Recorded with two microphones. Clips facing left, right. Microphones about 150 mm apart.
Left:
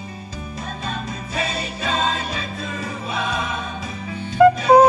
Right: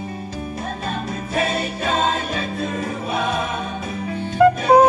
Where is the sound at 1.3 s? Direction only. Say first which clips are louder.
Right 5 dB; 50° right (ahead or behind).